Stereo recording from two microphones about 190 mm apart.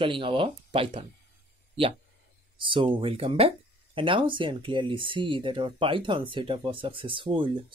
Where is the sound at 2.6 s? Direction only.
25° right (ahead or behind).